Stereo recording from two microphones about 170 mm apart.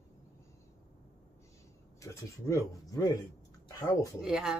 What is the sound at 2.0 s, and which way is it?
Speech, 20° left (ahead or behind).